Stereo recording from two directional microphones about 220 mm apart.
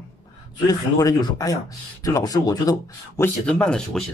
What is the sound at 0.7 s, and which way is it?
Speech, 15° left (ahead or behind).